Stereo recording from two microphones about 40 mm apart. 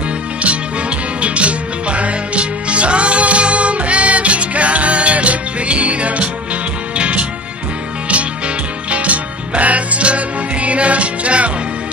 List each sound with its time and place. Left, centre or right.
0.4 s music: right
8.9 s music: right